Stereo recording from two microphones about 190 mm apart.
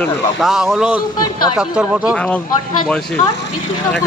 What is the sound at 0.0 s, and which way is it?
A man's voice, centre (ahead or behind).